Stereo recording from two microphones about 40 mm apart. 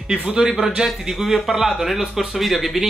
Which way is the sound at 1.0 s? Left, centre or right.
Centre.